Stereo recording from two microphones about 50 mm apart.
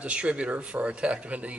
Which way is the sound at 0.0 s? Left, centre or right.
Right.